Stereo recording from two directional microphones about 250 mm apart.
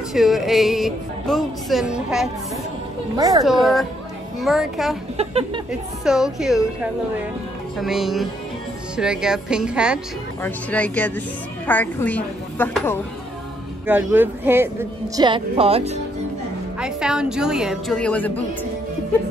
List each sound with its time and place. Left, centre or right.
0.1 s speech: centre
3.2 s speech: centre
4.4 s speech: centre
5.1 s speech: right
6.0 s a woman's voice: centre
13.8 s speech: centre; by 16.0 s right
16.8 s speech: centre